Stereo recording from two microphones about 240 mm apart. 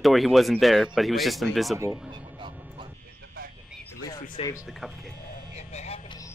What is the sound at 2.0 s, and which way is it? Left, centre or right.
Music, centre.